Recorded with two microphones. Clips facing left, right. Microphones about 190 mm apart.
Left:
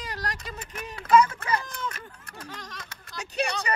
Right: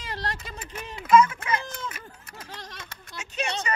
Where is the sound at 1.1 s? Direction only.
35° left (ahead or behind).